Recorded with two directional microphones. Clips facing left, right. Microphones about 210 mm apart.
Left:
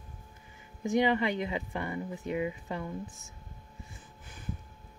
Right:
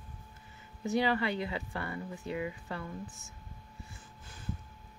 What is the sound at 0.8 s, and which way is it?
Speech, 15° left (ahead or behind).